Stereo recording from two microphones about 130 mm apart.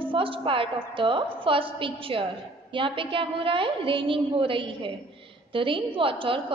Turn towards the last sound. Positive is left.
turn(degrees=-40)  # may be behind; listen again after turning